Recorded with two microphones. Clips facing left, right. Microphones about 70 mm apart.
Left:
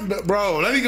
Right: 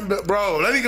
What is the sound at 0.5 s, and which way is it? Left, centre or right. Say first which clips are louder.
Speech: even; right.